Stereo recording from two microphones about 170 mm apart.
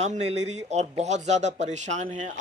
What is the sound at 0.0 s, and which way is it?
Speech, 40° right (ahead or behind).